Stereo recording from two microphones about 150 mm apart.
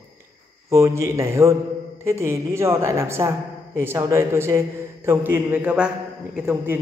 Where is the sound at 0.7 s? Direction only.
20° right (ahead or behind).